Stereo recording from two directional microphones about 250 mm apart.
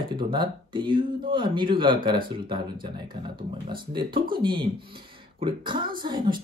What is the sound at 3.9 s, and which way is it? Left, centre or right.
Speech, centre.